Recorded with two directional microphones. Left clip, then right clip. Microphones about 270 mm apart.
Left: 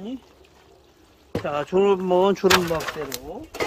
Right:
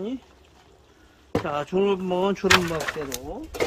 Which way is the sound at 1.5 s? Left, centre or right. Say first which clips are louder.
Left 4 dB; centre.